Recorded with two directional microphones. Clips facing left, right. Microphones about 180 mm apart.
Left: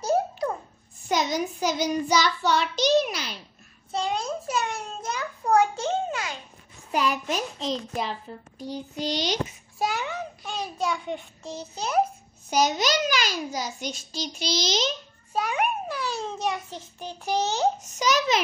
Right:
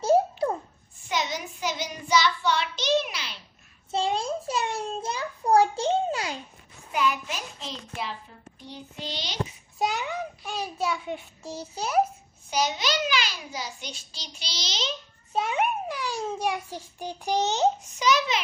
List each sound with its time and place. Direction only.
0.0 s babbling: 25° right (ahead or behind)
1.0 s child singing: 40° left (ahead or behind)
3.9 s a child's voice: 30° right (ahead or behind)
6.9 s a child's voice: 40° left (ahead or behind)
9.8 s a child's voice: 20° right (ahead or behind)
12.4 s a child's voice: 45° left (ahead or behind)
15.3 s a child's voice: 25° right (ahead or behind)
17.8 s a child's voice: 40° left (ahead or behind)